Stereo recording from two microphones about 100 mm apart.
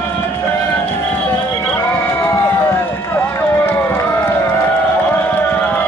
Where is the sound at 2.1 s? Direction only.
25° left (ahead or behind).